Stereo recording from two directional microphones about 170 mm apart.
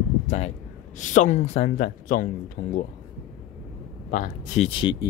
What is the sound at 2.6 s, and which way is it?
Speech, 65° left (ahead or behind).